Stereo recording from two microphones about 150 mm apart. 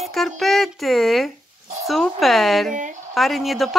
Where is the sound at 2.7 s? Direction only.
55° right (ahead or behind).